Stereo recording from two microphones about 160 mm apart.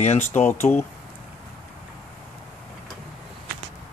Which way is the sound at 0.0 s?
45° left (ahead or behind).